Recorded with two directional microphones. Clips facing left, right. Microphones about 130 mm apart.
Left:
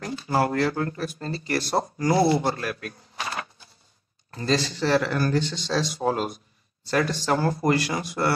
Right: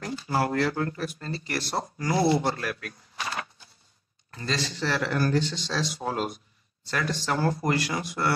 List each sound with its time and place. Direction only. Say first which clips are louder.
0.0 s speech: left 3 dB; 40° left (ahead or behind)